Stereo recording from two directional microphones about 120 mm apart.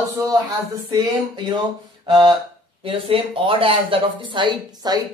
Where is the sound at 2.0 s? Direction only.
40° right (ahead or behind).